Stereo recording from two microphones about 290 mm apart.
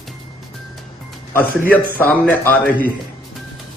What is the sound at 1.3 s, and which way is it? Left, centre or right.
A man's voice, centre.